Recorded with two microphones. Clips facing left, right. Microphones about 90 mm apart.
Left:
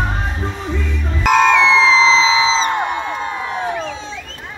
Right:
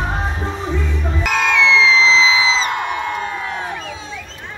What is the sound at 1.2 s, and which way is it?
Music, 35° left (ahead or behind).